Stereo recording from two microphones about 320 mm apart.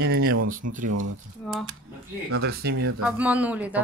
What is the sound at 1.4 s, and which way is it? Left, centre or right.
Speech, centre.